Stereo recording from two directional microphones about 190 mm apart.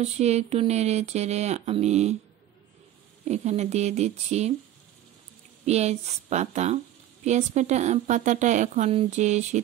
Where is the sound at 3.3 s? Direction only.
35° right (ahead or behind).